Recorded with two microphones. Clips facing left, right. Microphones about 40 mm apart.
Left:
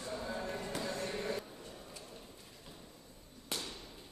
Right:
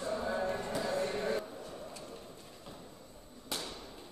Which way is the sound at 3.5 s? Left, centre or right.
Centre.